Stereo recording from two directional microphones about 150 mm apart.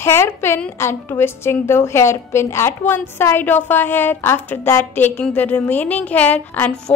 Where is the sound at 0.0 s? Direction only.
15° left (ahead or behind).